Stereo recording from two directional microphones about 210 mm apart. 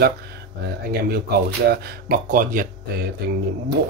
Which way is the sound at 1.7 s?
40° right (ahead or behind).